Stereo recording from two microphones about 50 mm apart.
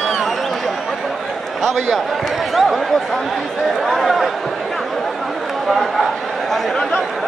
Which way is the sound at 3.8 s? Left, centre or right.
Centre.